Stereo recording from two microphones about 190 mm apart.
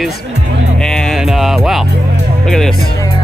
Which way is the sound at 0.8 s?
5° left (ahead or behind).